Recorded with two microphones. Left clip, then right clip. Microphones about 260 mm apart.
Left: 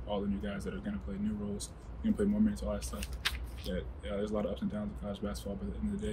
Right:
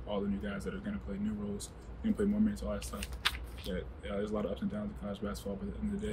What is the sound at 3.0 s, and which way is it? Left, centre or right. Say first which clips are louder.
Speech: right 2 dB; right.